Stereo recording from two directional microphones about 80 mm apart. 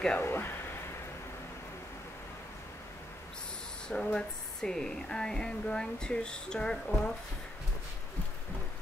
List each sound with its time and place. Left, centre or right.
0.2 s speech: left
3.9 s speech: centre